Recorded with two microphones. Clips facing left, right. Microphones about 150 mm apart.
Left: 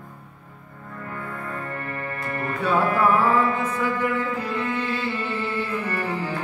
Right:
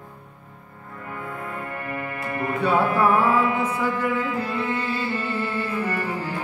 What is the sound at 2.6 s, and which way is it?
Mantra, 10° right (ahead or behind).